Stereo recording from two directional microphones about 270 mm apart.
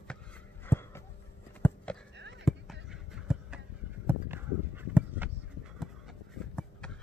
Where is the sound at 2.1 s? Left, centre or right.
Right.